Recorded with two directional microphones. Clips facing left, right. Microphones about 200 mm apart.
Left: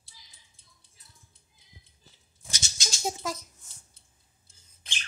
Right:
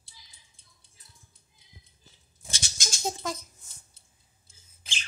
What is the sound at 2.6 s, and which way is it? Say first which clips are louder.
Rattle: even; 50° right (ahead or behind).